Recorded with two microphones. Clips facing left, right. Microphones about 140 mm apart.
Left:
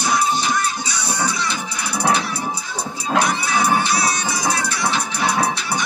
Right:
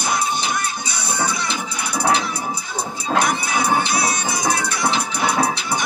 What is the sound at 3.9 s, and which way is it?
Music, 55° right (ahead or behind).